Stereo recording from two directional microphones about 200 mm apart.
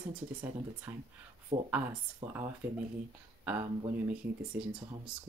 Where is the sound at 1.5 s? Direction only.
30° right (ahead or behind).